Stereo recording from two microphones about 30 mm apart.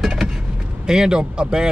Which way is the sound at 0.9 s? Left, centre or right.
Right.